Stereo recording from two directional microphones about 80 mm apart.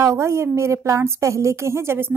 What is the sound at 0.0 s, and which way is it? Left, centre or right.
A woman's voice, right.